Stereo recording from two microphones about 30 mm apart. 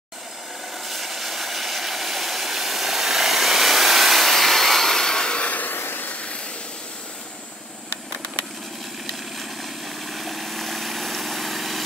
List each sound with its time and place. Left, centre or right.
0.8 s vehicle: centre
5.4 s a sound: left
10.0 s vehicle: centre